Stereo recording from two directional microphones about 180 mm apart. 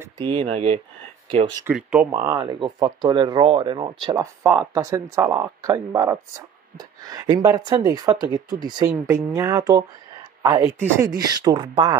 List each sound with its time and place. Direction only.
0.2 s speech: 30° right (ahead or behind)
1.7 s speech: 5° right (ahead or behind)
2.1 s speech: 20° right (ahead or behind)
4.4 s speech: 15° right (ahead or behind)